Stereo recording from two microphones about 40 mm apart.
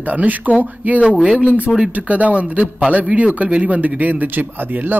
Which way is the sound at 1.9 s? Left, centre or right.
Right.